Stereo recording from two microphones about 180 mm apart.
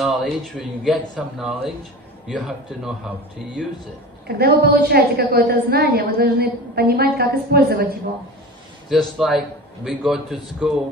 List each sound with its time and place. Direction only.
0.0 s speech: centre (ahead or behind)
4.3 s a woman's voice: 60° right (ahead or behind)
8.8 s speech: centre (ahead or behind)